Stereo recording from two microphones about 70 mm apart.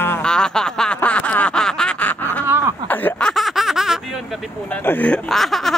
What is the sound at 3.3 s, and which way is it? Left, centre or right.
Speech, centre.